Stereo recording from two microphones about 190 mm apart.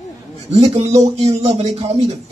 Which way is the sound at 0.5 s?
35° right (ahead or behind).